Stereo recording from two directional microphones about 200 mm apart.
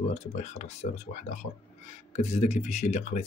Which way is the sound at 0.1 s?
35° left (ahead or behind).